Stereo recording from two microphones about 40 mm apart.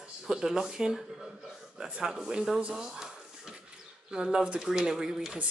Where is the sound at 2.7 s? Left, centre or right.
Centre.